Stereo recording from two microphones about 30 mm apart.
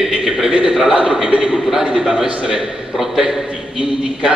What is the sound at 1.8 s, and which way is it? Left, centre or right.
Speech, centre.